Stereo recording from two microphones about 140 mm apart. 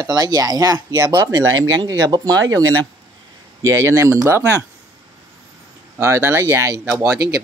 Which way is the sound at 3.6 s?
20° right (ahead or behind).